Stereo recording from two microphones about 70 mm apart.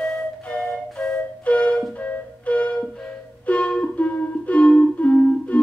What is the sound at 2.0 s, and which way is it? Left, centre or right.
Flute, centre.